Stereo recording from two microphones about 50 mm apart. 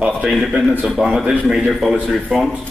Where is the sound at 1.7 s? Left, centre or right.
Centre.